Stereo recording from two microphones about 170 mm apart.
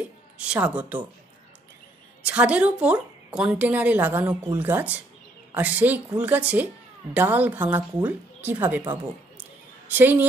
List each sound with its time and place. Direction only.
0.4 s speech: 5° right (ahead or behind)
2.2 s speech: 5° right (ahead or behind)
9.8 s a woman's voice: 10° right (ahead or behind)